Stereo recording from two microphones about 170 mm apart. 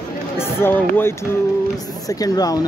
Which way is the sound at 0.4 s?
15° left (ahead or behind).